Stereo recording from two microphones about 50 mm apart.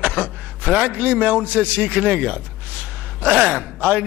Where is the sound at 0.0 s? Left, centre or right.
Right.